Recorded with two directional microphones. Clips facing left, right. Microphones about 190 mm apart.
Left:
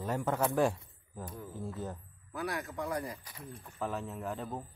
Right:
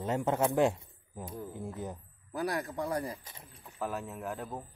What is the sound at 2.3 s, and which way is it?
Speech, 35° right (ahead or behind).